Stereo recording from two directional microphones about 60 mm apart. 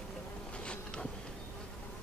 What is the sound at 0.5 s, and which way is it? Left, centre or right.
Insect, centre.